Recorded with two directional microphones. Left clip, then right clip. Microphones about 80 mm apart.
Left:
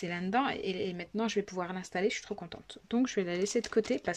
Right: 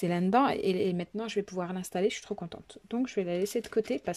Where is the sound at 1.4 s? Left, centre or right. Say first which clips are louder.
Right 1 dB; right.